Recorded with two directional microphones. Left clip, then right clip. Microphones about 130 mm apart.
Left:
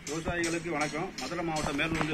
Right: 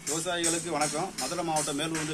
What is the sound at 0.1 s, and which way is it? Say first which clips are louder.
A man's voice: right 2 dB; 10° right (ahead or behind).